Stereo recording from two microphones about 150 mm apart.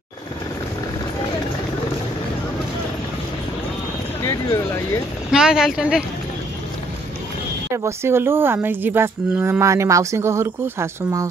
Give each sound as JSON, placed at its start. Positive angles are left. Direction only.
{"t": 4.2, "sound": "a sound", "side_deg": 20}
{"t": 5.3, "sound": "speech", "side_deg": -5}
{"t": 7.7, "sound": "speech", "side_deg": -15}